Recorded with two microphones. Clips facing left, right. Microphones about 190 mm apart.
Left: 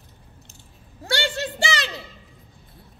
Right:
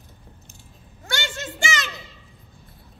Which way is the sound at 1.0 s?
35° left (ahead or behind).